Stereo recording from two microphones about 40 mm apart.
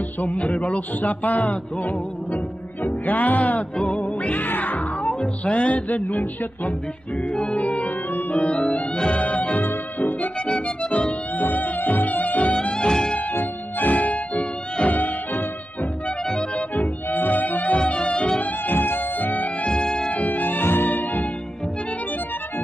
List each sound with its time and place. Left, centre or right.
0.2 s music: left
5.2 s music: left
8.9 s music: left
9.2 s music: left
9.6 s music: left
10.4 s music: left
11.4 s music: left
12.6 s music: left
13.3 s music: left
17.1 s music: left
17.7 s music: left
18.4 s music: left